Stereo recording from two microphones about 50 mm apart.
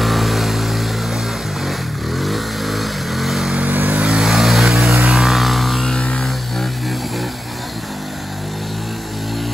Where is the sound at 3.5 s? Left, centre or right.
Right.